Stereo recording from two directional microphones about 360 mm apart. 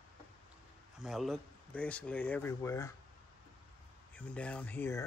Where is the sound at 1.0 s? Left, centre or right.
Centre.